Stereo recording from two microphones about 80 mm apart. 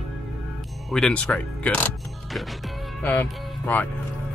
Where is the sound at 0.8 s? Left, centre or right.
Centre.